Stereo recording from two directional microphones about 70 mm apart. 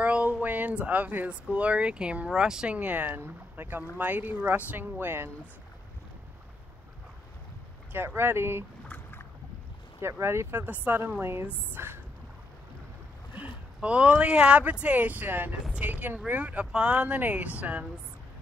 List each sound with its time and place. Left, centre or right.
0.0 s speech: centre
2.8 s speech: right
7.9 s speech: right
8.8 s rowboat: left
9.9 s speech: right
13.3 s speech: centre